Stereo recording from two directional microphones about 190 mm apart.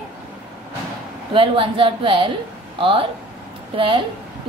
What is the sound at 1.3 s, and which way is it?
A woman's voice, 25° right (ahead or behind).